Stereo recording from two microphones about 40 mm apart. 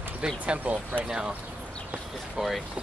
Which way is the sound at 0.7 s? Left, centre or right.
Right.